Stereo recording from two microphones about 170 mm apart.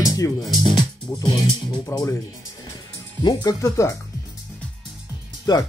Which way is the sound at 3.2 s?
20° left (ahead or behind).